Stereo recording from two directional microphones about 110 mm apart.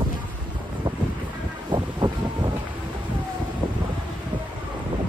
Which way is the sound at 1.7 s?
45° right (ahead or behind).